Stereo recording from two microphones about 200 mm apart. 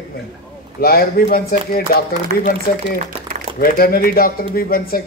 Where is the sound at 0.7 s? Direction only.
50° left (ahead or behind).